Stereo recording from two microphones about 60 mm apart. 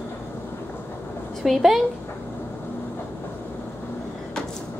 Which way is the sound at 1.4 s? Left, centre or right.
Centre.